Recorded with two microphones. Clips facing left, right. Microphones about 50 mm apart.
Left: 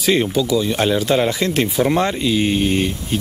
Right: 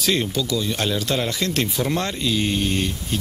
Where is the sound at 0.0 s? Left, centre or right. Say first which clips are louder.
Left 5 dB; centre.